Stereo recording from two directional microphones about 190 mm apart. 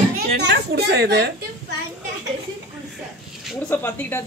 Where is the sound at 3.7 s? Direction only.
10° left (ahead or behind).